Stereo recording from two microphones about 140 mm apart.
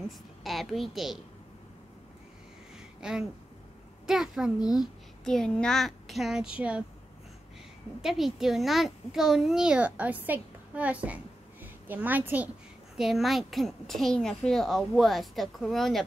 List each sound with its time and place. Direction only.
0.4 s a child's voice: centre (ahead or behind)
3.0 s a sound: 5° right (ahead or behind)
4.0 s a child's voice: 5° right (ahead or behind)
4.6 s speech: 30° left (ahead or behind)
5.2 s a child's voice: 5° left (ahead or behind)
8.0 s a child's voice: centre (ahead or behind)
12.9 s a child's voice: centre (ahead or behind)